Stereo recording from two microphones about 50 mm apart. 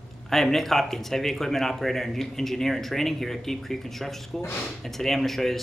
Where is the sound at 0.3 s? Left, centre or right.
Centre.